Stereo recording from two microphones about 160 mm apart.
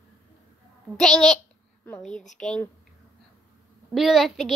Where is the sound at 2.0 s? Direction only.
50° left (ahead or behind).